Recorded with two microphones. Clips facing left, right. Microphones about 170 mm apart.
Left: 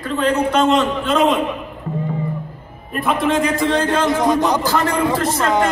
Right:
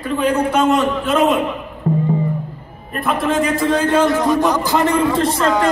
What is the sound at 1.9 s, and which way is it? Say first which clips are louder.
Music: right 8 dB; 35° right (ahead or behind).